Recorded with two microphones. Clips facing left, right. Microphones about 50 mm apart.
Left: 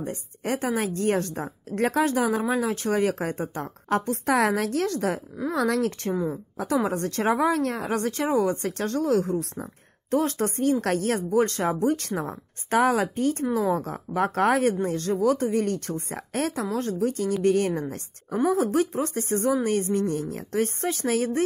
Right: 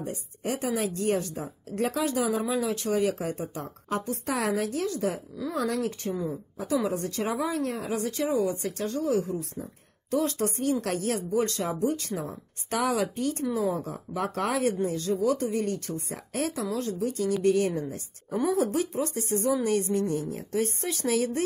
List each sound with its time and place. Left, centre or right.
0.0 s speech: left
10.1 s a woman's voice: left
13.7 s speech: left
18.3 s a woman's voice: left